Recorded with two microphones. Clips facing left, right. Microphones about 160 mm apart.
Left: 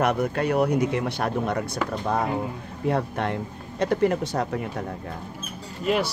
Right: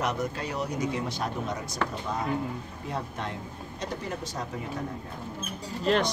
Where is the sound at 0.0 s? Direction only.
60° left (ahead or behind).